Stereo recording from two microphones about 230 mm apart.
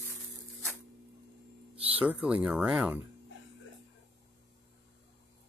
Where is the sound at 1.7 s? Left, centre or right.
Right.